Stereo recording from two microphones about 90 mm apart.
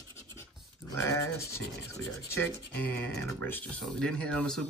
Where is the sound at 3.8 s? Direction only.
10° left (ahead or behind).